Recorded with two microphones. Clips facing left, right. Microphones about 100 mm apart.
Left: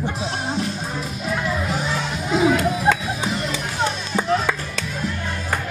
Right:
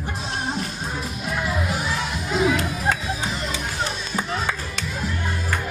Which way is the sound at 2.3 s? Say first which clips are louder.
Left 3 dB; centre (ahead or behind).